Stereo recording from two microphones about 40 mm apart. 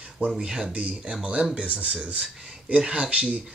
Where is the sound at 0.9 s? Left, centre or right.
Right.